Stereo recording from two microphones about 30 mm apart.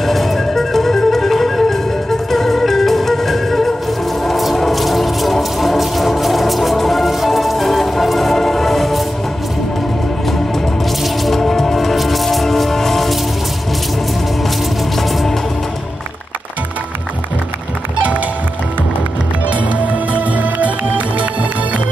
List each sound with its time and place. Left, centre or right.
0.0 s music: centre
11.3 s music: centre
15.0 s music: centre
19.5 s music: right